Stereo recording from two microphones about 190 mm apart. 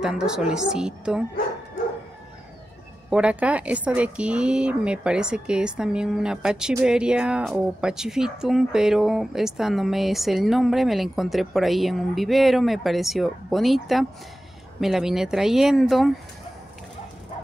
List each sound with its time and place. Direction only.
0.0 s speech: 5° right (ahead or behind)
3.1 s speech: 5° right (ahead or behind)